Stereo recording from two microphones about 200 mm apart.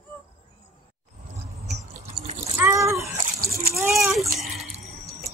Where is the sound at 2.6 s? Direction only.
15° right (ahead or behind).